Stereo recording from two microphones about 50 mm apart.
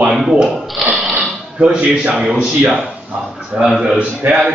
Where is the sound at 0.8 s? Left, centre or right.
Centre.